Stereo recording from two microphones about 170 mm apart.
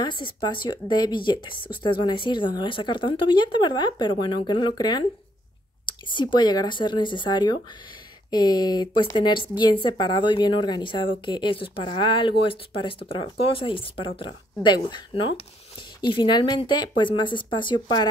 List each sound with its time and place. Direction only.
0.0 s speech: 25° left (ahead or behind)